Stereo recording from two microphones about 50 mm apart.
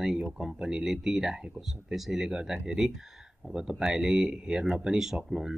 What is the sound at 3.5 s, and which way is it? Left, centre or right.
Speech, centre.